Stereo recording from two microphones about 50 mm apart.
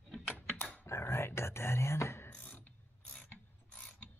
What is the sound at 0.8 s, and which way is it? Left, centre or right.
Whispering, left.